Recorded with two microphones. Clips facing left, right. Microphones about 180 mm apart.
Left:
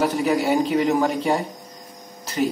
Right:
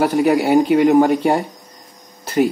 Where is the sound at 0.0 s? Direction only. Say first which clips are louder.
Right 5 dB; 60° right (ahead or behind).